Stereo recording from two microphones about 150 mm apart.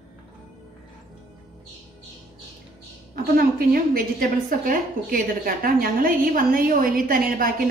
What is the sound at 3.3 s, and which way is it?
A woman's voice, 75° right (ahead or behind).